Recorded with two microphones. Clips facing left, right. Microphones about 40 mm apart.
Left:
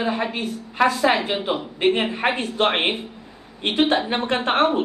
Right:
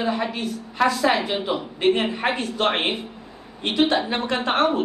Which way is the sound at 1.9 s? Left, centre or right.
Left.